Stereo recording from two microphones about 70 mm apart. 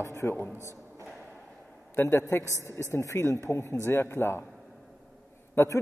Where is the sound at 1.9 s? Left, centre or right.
Left.